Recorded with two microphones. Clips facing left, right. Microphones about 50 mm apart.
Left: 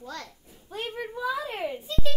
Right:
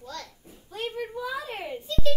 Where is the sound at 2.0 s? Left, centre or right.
Centre.